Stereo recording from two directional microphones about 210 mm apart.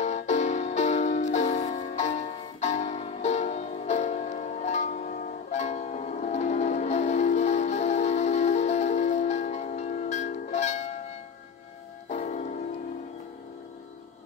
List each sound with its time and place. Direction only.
0.0 s music: 35° left (ahead or behind)
12.1 s music: 35° left (ahead or behind)